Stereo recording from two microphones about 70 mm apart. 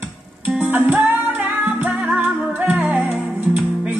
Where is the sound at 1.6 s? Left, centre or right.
Centre.